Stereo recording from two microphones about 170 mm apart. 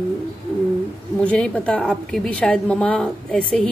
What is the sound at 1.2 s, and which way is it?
A woman's voice, 5° left (ahead or behind).